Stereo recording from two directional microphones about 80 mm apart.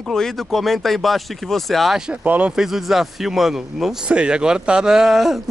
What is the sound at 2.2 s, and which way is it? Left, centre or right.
Speech, centre.